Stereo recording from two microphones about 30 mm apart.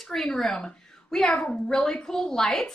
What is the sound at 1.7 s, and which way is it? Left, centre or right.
Speech, left.